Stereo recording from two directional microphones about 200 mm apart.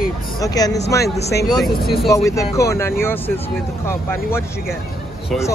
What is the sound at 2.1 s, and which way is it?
Speech, 15° left (ahead or behind).